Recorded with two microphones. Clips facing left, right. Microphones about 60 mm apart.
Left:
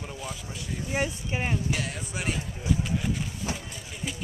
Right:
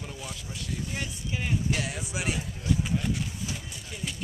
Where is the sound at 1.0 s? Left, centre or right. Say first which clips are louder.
Left 4 dB; left.